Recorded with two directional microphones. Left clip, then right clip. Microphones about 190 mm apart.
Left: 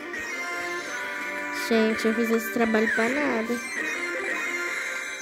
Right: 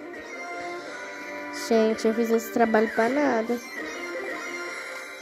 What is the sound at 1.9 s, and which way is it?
Speech, 20° left (ahead or behind).